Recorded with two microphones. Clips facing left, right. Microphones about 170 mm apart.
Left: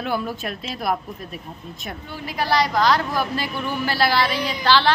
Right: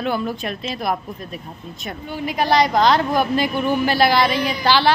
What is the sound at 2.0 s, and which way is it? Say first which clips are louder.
A woman's voice: right 5 dB; 20° right (ahead or behind).